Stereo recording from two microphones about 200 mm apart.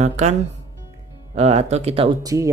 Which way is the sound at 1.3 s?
30° right (ahead or behind).